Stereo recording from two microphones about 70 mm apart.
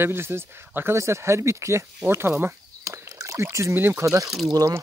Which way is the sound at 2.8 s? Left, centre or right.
Right.